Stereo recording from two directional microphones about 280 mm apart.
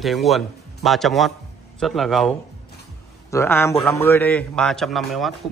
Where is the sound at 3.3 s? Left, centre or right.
Centre.